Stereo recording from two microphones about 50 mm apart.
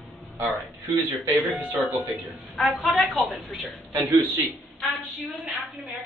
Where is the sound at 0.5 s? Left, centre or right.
Right.